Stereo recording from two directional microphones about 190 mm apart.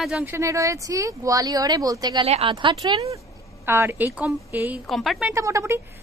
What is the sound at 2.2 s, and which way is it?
Speech, 35° right (ahead or behind).